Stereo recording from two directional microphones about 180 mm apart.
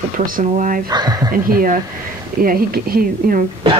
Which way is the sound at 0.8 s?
20° right (ahead or behind).